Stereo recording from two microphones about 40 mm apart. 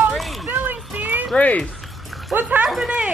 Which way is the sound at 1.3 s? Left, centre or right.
Left.